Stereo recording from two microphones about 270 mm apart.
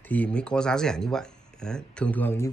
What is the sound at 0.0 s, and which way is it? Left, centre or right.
Speech, centre.